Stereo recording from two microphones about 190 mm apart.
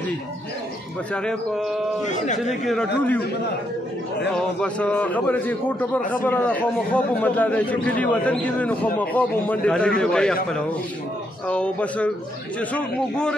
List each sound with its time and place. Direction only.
1.1 s speech: centre (ahead or behind)
2.0 s a man's voice: 40° left (ahead or behind)
2.6 s speech: centre (ahead or behind)
4.3 s a man's voice: 5° left (ahead or behind)